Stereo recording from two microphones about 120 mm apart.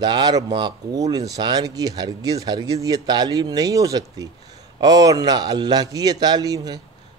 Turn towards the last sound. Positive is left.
turn(degrees=-30)  # may be behind; listen again after turning